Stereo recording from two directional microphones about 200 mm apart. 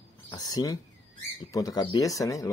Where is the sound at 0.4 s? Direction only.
20° left (ahead or behind).